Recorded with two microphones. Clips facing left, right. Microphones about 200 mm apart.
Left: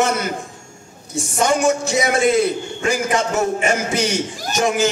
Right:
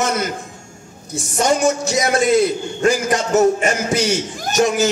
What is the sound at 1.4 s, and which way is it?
A man's voice, 40° right (ahead or behind).